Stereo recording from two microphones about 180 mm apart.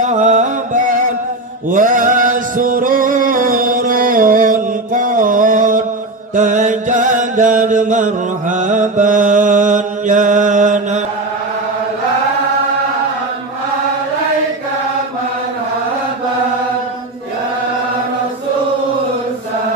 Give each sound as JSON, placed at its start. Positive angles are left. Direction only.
{"t": 0.0, "sound": "music", "side_deg": -40}
{"t": 6.3, "sound": "chant", "side_deg": -45}